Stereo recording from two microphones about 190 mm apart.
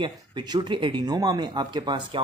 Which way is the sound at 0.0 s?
25° right (ahead or behind).